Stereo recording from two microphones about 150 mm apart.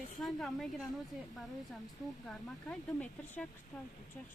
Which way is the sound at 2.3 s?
5° left (ahead or behind).